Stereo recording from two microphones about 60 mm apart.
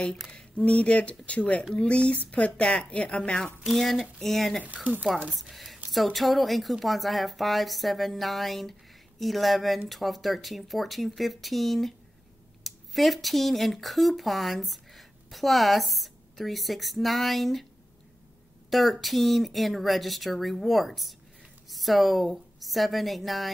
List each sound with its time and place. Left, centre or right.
0.3 s speech: centre
3.6 s a woman's voice: centre
18.7 s a woman's voice: centre